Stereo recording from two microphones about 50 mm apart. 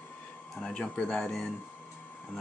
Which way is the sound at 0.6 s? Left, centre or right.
Centre.